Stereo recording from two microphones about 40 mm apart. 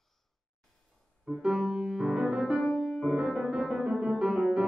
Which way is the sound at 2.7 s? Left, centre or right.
Centre.